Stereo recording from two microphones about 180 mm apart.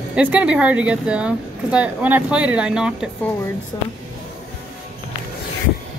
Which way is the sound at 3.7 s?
20° left (ahead or behind).